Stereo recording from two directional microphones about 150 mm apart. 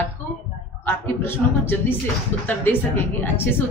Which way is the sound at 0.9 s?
15° left (ahead or behind).